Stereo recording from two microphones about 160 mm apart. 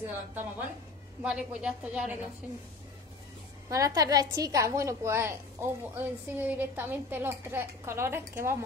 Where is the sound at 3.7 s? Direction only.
20° right (ahead or behind).